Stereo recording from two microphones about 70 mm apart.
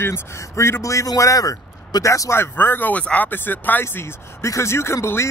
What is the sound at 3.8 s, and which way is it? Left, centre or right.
Speech, left.